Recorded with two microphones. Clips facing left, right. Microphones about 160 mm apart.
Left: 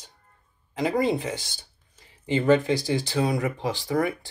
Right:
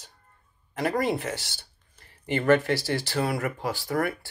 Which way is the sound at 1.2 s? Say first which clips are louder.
Left 1 dB; 15° left (ahead or behind).